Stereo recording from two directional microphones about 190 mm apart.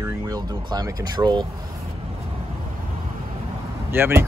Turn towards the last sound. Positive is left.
turn(degrees=-10)  # may be behind; listen again after turning